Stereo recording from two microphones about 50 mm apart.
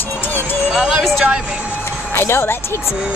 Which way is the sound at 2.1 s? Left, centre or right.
Left.